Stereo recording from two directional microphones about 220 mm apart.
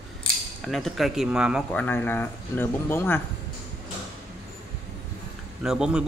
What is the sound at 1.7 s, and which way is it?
Speech, 10° left (ahead or behind).